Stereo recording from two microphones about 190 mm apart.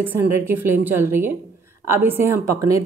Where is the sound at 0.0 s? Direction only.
10° right (ahead or behind).